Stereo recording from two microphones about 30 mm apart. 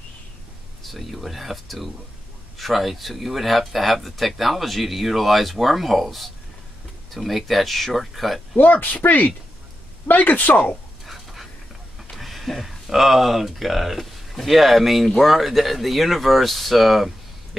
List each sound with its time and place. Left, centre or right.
0.8 s speech: centre
8.5 s speech: left
10.0 s speech: left
12.1 s speech: centre